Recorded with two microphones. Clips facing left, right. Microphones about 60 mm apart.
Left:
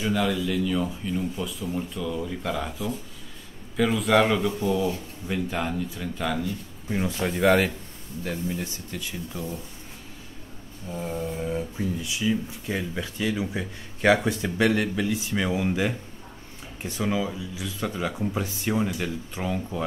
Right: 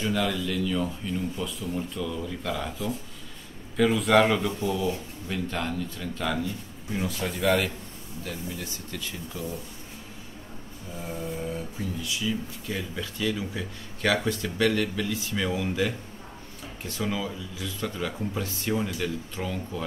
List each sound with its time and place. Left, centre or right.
0.0 s speech: centre
4.6 s speech: centre
6.9 s speech: left
8.9 s speech: centre
11.1 s speech: centre